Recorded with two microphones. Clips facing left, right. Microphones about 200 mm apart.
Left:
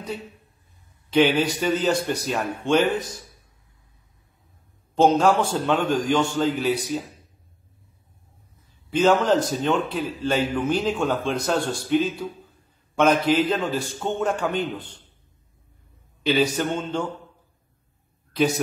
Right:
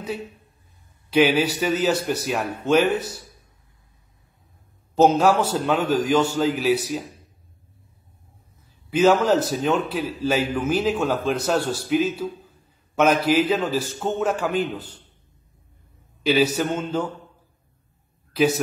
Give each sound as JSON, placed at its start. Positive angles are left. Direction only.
{"t": 1.1, "sound": "a man's voice", "side_deg": -5}
{"t": 4.9, "sound": "a man's voice", "side_deg": -5}
{"t": 8.9, "sound": "a man's voice", "side_deg": -5}
{"t": 16.2, "sound": "a man's voice", "side_deg": -5}
{"t": 18.3, "sound": "a man's voice", "side_deg": 0}